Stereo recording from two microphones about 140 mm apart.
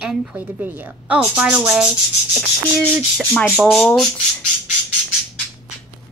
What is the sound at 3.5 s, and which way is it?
Speech, 10° right (ahead or behind).